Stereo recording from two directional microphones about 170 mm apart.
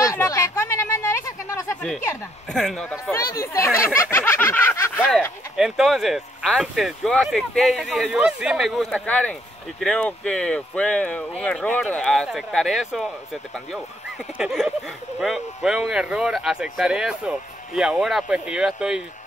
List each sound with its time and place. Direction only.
0.0 s a sound: 20° left (ahead or behind)
1.8 s speech: 5° left (ahead or behind)
5.6 s speech: centre (ahead or behind)